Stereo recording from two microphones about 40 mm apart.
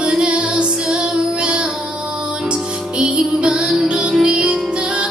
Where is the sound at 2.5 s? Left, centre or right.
Right.